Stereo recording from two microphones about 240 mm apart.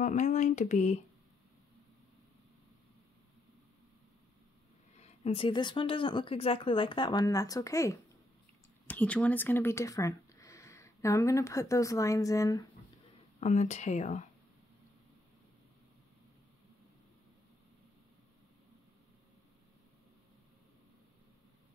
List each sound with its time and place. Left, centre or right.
0.0 s speech: left
4.9 s speech: left
13.4 s speech: left